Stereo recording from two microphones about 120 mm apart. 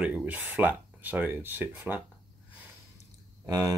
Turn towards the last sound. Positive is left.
turn(degrees=-35)  # may be behind; listen again after turning